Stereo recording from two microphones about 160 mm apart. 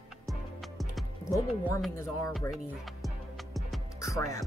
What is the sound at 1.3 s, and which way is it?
Speech, 20° left (ahead or behind).